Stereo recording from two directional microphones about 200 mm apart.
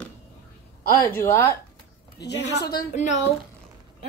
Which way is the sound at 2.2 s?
60° left (ahead or behind).